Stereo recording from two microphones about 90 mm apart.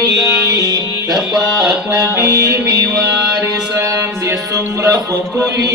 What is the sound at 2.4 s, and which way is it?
Music, 35° right (ahead or behind).